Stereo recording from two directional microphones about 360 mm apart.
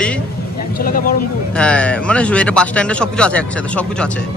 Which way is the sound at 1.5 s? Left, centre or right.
Centre.